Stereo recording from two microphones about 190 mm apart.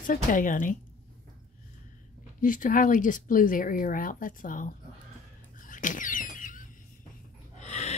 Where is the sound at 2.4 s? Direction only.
45° left (ahead or behind).